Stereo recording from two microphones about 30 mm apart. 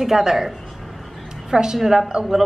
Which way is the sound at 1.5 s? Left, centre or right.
Right.